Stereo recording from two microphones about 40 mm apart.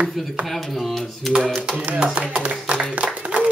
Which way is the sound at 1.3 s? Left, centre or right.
Centre.